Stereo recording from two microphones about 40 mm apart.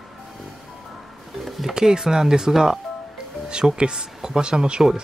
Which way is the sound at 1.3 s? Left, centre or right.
Centre.